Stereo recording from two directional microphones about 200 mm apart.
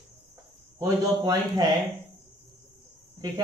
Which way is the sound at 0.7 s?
20° right (ahead or behind).